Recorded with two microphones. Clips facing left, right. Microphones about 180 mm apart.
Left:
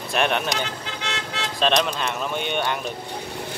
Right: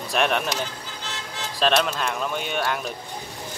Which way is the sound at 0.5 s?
75° left (ahead or behind).